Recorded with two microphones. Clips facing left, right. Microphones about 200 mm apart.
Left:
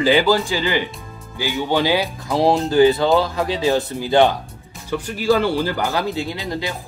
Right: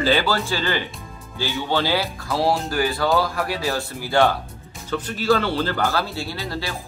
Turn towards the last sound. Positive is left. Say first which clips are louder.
# left 3 dB
turn(degrees=20)  # may be behind; listen again after turning